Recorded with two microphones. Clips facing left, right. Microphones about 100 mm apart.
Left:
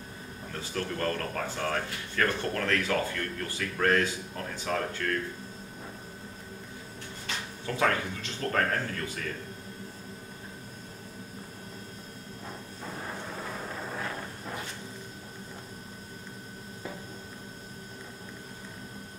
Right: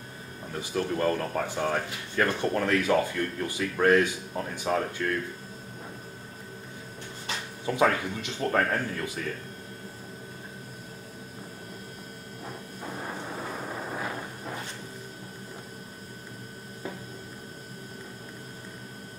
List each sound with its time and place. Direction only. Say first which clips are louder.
0.6 s speech: right 5 dB; 15° right (ahead or behind)
7.6 s speech: right 3 dB; 15° right (ahead or behind)
12.8 s vehicle: right 2 dB; 10° right (ahead or behind)